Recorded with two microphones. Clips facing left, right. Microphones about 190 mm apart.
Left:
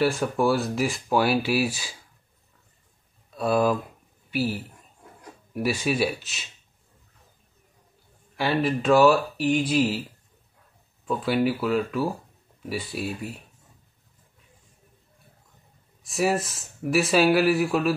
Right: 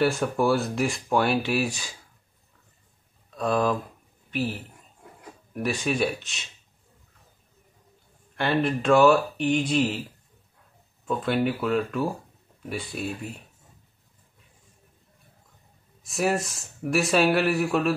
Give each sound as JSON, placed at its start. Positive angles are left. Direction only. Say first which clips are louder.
{"t": 0.0, "sound": "speech", "louder": "even", "side_deg": 0}
{"t": 3.3, "sound": "a woman's voice", "louder": "left 2 dB", "side_deg": 10}
{"t": 8.4, "sound": "speech", "louder": "even", "side_deg": 0}
{"t": 11.1, "sound": "speech", "louder": "left 1 dB", "side_deg": 5}
{"t": 16.0, "sound": "speech", "louder": "left 1 dB", "side_deg": 0}